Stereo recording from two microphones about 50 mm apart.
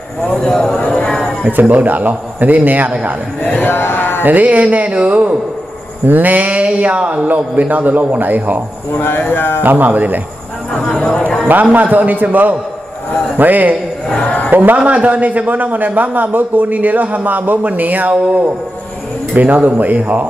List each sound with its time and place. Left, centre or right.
0.2 s speech: centre
0.8 s a sound: left
1.6 s a man's voice: right
3.4 s speech: left
4.2 s a man's voice: right
8.9 s a man's voice: left
9.6 s a man's voice: right
10.8 s speech: centre
11.6 s a man's voice: right
14.2 s a man's voice: left
14.5 s a man's voice: right